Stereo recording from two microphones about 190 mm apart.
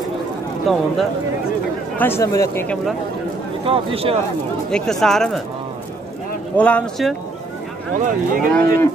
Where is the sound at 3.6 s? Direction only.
30° right (ahead or behind).